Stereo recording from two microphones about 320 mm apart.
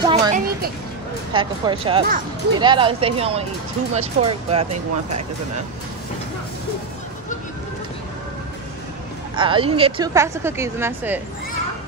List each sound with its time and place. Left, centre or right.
0.0 s a sound: right
1.3 s a woman's voice: centre
9.3 s a woman's voice: centre